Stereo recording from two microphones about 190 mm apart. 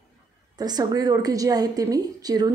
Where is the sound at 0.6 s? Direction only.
20° right (ahead or behind).